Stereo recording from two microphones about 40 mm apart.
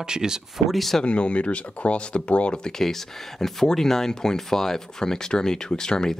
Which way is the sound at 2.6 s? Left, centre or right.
Centre.